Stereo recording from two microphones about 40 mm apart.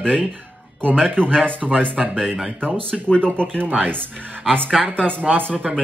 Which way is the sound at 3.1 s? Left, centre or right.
Left.